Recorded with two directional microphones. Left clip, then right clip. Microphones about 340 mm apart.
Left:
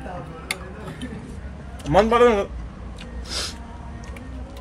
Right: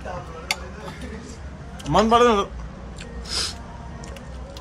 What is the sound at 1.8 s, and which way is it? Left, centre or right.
Speech, centre.